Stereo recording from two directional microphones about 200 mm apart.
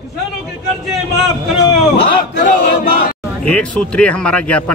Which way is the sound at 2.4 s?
45° left (ahead or behind).